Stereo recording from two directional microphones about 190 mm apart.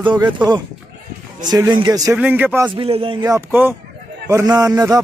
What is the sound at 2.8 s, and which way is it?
A man's voice, 30° right (ahead or behind).